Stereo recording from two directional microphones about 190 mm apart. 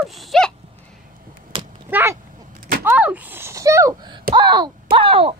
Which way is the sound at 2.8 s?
10° right (ahead or behind).